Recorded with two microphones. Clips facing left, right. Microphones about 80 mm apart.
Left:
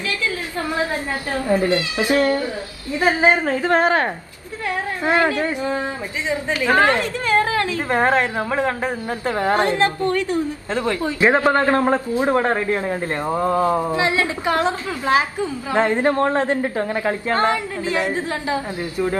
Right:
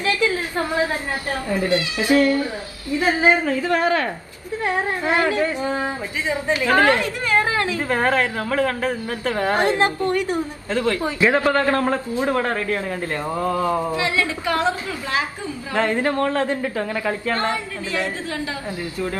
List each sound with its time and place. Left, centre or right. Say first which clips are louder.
0.0 s a sound: right 4 dB; right
1.3 s a man's voice: left 3 dB; left
5.6 s a woman's voice: even; right
6.6 s a man's voice: left 1 dB; left
7.2 s a sound: left 2 dB; right
7.9 s a man's voice: left 3 dB; left
9.6 s a woman's voice: left 1 dB; right
10.7 s a man's voice: right 2 dB; left